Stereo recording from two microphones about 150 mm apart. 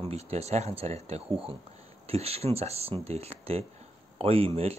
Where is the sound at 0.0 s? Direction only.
45° right (ahead or behind).